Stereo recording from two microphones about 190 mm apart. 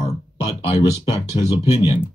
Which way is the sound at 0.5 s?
25° left (ahead or behind).